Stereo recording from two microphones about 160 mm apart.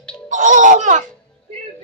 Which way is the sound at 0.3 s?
50° right (ahead or behind).